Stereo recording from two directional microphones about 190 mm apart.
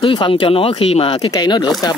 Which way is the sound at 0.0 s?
25° left (ahead or behind).